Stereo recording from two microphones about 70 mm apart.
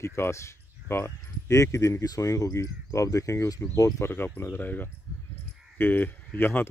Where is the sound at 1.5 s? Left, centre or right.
Left.